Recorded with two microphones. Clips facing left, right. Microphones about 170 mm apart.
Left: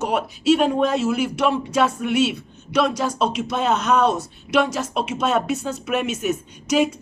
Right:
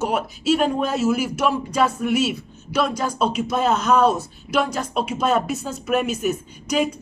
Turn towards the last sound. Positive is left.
turn(degrees=0)  # may be behind; listen again after turning